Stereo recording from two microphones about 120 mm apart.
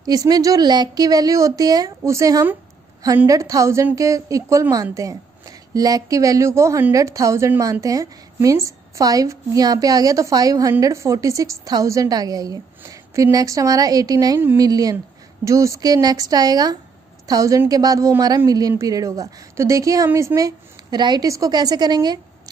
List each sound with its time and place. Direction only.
0.0 s a woman's voice: 30° right (ahead or behind)